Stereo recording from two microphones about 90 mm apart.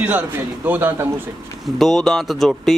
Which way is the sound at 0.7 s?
25° right (ahead or behind).